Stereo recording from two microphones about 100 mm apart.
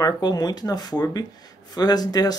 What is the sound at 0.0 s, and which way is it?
Speech, 45° left (ahead or behind).